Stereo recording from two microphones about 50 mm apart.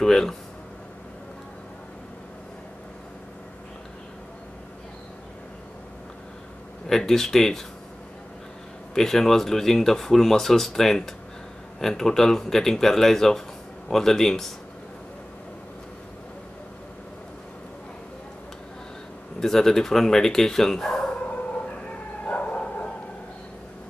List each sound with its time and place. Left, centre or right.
0.0 s speech: centre
6.9 s speech: centre
8.9 s speech: centre
19.4 s speech: centre
22.2 s dog: left